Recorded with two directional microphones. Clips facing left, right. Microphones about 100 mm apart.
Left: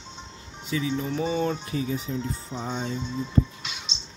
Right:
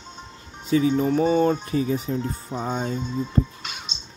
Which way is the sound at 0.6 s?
45° right (ahead or behind).